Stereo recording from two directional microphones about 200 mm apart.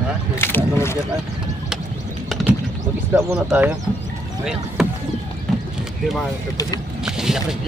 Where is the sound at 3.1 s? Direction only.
10° right (ahead or behind).